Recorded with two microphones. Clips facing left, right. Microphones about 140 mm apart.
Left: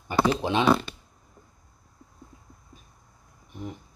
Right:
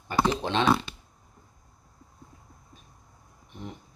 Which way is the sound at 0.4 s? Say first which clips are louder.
Left 2 dB; 10° left (ahead or behind).